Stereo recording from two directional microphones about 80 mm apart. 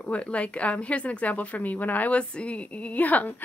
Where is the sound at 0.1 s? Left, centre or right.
Centre.